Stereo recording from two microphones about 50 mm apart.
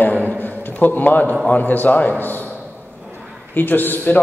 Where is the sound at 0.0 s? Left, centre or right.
Left.